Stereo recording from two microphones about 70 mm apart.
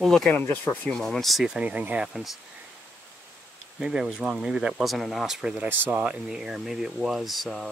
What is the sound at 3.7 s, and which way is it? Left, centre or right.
Speech, centre.